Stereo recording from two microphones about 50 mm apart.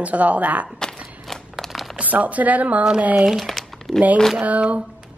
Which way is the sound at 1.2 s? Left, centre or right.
Centre.